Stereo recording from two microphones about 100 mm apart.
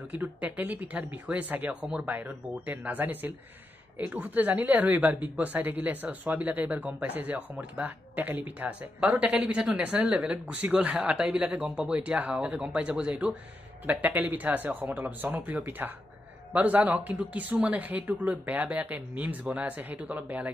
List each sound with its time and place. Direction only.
0.1 s speech: 15° right (ahead or behind)